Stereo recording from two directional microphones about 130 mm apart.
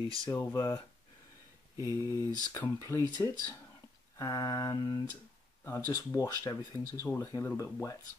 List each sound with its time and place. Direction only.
0.3 s speech: 20° left (ahead or behind)
1.8 s mantra: 25° right (ahead or behind)
2.2 s speech: 20° left (ahead or behind)